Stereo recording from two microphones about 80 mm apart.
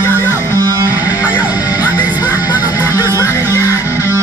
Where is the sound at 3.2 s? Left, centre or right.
Left.